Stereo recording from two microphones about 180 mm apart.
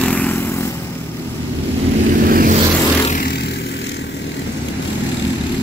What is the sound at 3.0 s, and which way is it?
Vehicle, 50° left (ahead or behind).